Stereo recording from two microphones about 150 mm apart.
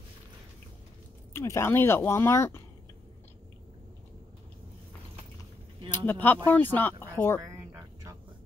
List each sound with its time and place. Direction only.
1.3 s speech: 20° left (ahead or behind)
5.9 s speech: 15° left (ahead or behind)
7.4 s a sound: 20° right (ahead or behind)